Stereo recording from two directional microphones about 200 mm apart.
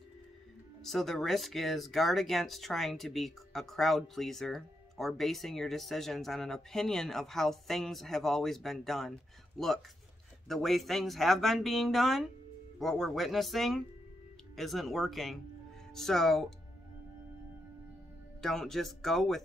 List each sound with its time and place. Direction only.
0.8 s speech: centre (ahead or behind)
18.4 s speech: centre (ahead or behind)